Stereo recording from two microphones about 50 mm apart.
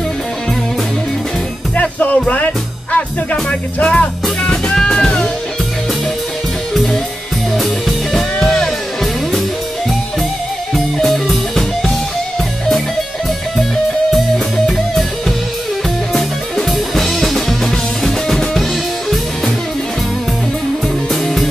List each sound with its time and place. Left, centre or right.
1.8 s music: left; by 5.3 s centre
8.1 s music: centre
10.7 s music: centre
16.1 s music: centre